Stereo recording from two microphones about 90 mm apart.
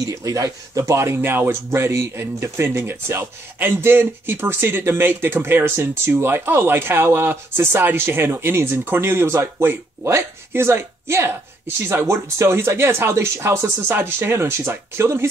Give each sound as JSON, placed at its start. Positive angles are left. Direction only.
{"t": 0.0, "sound": "speech", "side_deg": -40}